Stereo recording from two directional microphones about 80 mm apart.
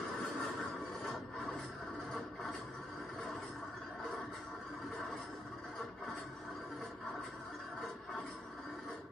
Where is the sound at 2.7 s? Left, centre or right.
Centre.